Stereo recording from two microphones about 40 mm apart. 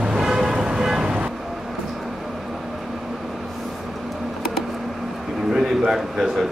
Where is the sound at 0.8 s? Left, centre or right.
Centre.